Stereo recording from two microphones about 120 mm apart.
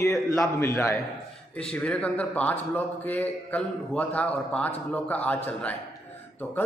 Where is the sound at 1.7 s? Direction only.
10° left (ahead or behind).